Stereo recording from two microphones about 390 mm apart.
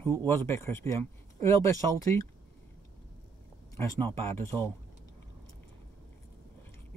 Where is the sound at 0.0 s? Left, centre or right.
Centre.